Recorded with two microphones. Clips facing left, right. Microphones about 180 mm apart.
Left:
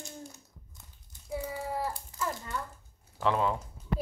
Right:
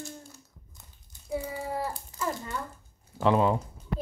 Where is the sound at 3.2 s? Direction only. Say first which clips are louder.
Right 5 dB; 15° right (ahead or behind).